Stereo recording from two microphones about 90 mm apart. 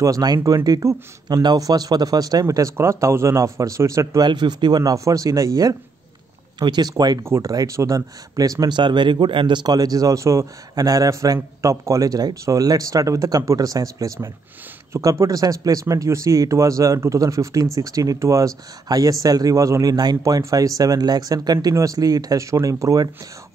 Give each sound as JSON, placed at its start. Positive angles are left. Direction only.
{"t": 0.0, "sound": "speech", "side_deg": -45}
{"t": 0.4, "sound": "speech", "side_deg": -30}
{"t": 0.7, "sound": "speech", "side_deg": -45}
{"t": 4.2, "sound": "speech", "side_deg": -55}
{"t": 7.2, "sound": "speech", "side_deg": -30}